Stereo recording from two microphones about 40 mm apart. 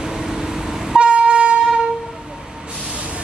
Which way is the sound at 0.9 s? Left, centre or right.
Right.